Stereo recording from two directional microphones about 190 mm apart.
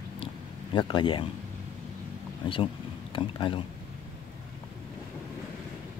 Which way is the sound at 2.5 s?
25° left (ahead or behind).